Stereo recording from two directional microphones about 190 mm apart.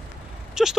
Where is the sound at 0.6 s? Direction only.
5° right (ahead or behind).